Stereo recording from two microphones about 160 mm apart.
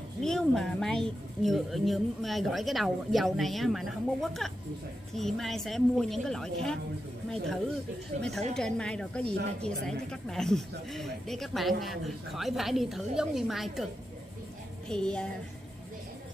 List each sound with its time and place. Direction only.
0.2 s a woman's voice: 5° left (ahead or behind)
8.2 s a woman's voice: centre (ahead or behind)
14.9 s a woman's voice: 5° left (ahead or behind)